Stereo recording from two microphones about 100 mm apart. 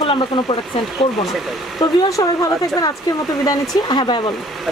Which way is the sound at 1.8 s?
35° left (ahead or behind).